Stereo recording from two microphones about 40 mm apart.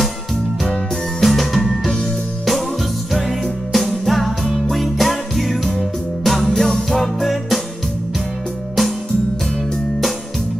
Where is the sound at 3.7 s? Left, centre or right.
Centre.